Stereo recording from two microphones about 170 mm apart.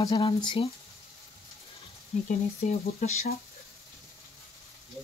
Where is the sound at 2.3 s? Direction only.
45° left (ahead or behind).